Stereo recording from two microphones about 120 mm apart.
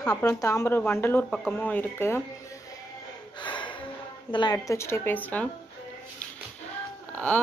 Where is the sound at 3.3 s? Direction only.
40° left (ahead or behind).